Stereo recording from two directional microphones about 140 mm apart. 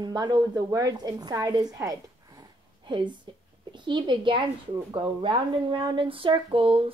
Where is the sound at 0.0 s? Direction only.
30° right (ahead or behind).